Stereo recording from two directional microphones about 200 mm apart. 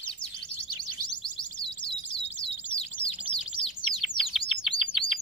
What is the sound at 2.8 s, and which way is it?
Bird, 25° left (ahead or behind).